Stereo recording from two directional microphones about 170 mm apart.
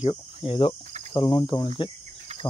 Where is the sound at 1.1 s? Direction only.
30° left (ahead or behind).